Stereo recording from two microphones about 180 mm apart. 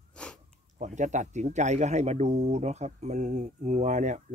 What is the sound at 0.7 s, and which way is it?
Speech, 40° right (ahead or behind).